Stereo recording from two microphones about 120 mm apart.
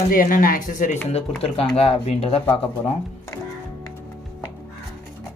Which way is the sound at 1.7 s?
55° left (ahead or behind).